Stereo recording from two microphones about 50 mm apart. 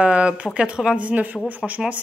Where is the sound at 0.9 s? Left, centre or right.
Right.